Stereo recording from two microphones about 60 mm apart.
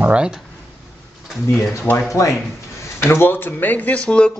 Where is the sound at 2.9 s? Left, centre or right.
Left; by 4.3 s centre.